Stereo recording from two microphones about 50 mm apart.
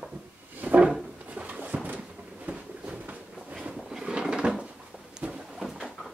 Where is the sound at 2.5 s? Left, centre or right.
Right.